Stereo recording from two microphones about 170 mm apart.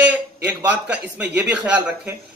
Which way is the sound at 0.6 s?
10° right (ahead or behind).